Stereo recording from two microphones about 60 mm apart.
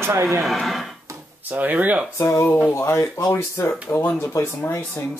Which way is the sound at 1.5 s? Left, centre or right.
Right.